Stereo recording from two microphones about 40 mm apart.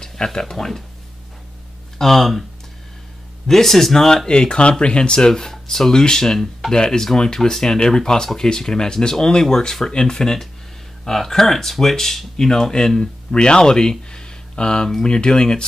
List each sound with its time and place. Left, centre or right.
0.0 s speech: centre
2.0 s speech: centre
3.4 s speech: centre
4.3 s speech: left